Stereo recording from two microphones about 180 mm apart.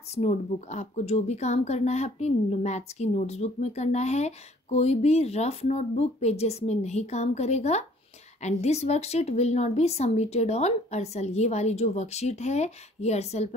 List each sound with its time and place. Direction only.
0.1 s a woman's voice: 40° left (ahead or behind)